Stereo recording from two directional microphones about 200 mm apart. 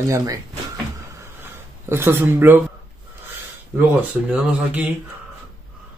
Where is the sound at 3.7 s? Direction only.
10° right (ahead or behind).